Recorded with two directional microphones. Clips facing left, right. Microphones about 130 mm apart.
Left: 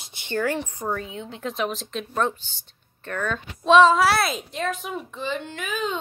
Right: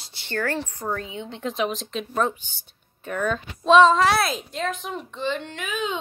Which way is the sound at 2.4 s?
10° right (ahead or behind).